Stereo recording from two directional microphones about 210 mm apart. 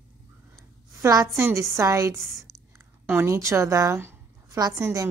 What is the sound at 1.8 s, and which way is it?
A woman's voice, 15° right (ahead or behind).